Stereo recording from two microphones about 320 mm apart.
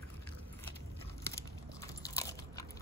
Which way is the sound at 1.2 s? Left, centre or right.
Centre.